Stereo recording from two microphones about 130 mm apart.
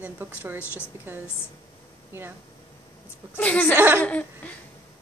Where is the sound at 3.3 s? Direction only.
10° left (ahead or behind).